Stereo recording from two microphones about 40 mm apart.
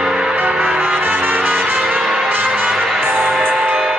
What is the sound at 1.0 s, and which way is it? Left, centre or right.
Brass instrument, right.